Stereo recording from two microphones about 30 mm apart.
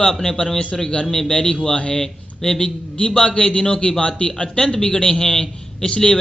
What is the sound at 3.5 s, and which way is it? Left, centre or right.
Speech, left.